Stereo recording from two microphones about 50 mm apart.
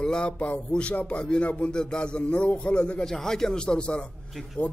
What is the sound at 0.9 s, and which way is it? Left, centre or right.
A man's voice, left.